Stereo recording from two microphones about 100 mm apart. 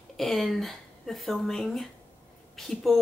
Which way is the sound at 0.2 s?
Centre (ahead or behind).